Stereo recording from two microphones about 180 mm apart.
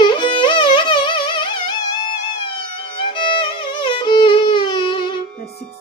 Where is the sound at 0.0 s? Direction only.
25° left (ahead or behind).